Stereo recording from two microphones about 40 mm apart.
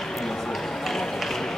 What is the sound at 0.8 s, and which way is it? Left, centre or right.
Run, centre.